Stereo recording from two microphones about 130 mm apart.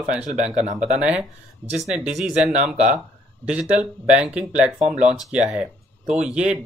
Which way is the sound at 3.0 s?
10° right (ahead or behind).